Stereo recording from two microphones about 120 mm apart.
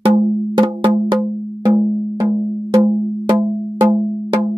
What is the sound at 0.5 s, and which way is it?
Wood block, 45° right (ahead or behind).